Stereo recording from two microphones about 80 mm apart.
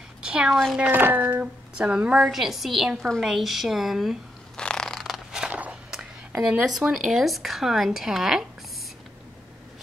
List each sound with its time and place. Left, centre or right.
0.2 s a woman's voice: centre
0.9 s a woman's voice: right; by 4.2 s centre
4.6 s a sound: centre
5.5 s walk: centre
6.4 s a woman's voice: centre